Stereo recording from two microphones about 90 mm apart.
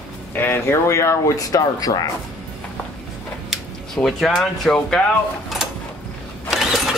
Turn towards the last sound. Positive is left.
turn(degrees=-5)  # may be behind; listen again after turning